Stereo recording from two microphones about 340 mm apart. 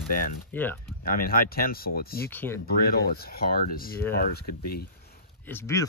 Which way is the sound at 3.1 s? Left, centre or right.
Left.